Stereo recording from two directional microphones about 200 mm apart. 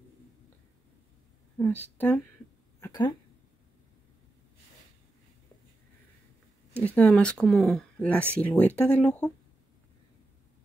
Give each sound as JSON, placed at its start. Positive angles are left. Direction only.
{"t": 1.6, "sound": "speech", "side_deg": 10}
{"t": 2.8, "sound": "a sound", "side_deg": 20}
{"t": 7.0, "sound": "speech", "side_deg": 5}